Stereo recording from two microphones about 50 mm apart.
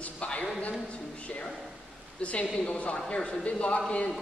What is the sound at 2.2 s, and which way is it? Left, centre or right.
A woman's voice, left.